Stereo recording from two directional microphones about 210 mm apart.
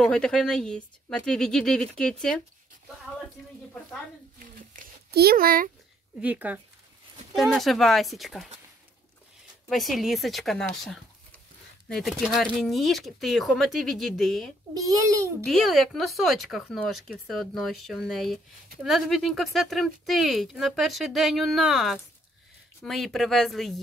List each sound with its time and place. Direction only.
0.0 s speech: 5° left (ahead or behind)
4.4 s a sound: 40° right (ahead or behind)
6.2 s a child's voice: 5° right (ahead or behind)
9.7 s speech: centre (ahead or behind)
14.7 s a child's voice: 15° right (ahead or behind)
15.4 s speech: centre (ahead or behind)